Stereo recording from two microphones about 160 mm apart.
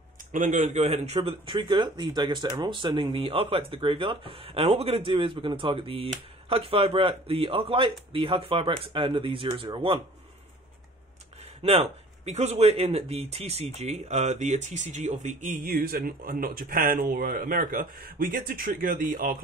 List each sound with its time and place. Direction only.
0.3 s speech: 55° right (ahead or behind); by 9.9 s 35° right (ahead or behind)
11.6 s speech: 40° right (ahead or behind); by 19.3 s 60° right (ahead or behind)